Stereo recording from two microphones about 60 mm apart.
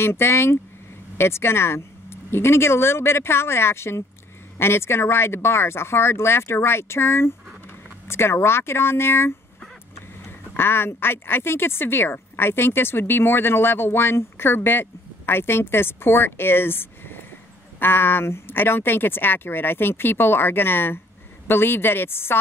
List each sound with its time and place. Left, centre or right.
0.0 s speech: left